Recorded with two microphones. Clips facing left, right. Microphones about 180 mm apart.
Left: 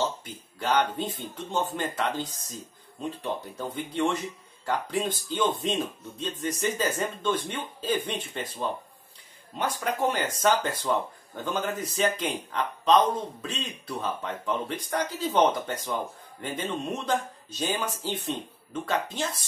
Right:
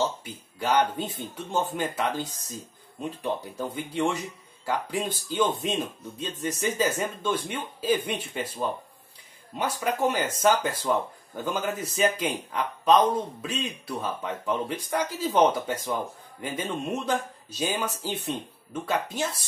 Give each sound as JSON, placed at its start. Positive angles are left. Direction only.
{"t": 0.2, "sound": "speech", "side_deg": -10}